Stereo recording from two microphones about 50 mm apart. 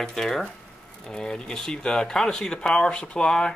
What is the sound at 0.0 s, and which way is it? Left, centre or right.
Speech, centre.